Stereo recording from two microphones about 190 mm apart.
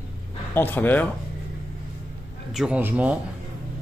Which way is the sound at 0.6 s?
10° left (ahead or behind).